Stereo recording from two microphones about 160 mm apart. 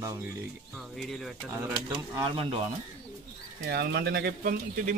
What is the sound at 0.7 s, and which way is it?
Speech, centre (ahead or behind).